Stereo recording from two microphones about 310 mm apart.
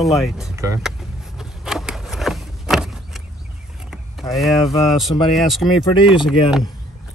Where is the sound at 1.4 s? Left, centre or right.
Centre.